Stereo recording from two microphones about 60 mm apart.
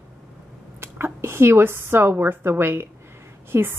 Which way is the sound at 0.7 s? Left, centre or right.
Right.